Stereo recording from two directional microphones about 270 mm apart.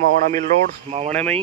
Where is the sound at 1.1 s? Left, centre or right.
Centre.